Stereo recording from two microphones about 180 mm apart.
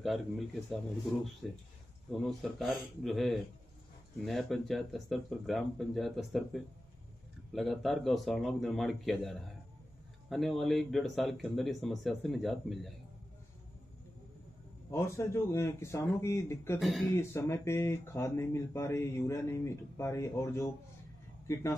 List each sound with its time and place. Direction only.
0.0 s speech: centre (ahead or behind)
14.9 s speech: 15° left (ahead or behind)
16.8 s speech: centre (ahead or behind)
17.1 s speech: 15° left (ahead or behind)